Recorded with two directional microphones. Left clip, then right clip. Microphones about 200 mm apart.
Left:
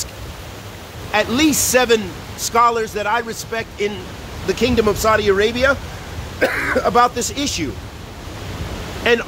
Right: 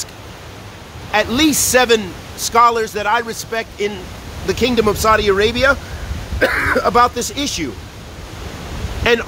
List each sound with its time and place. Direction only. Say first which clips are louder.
1.1 s a man's voice: right 1 dB; 15° right (ahead or behind)
9.0 s speech: right 1 dB; 20° right (ahead or behind)